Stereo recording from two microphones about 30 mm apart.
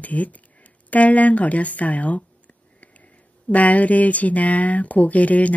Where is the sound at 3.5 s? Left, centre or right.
Left.